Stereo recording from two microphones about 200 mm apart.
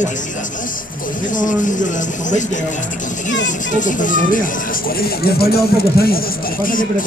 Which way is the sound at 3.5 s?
40° left (ahead or behind).